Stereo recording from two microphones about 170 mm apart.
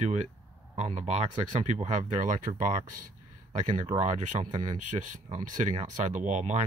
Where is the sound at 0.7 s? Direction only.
40° right (ahead or behind).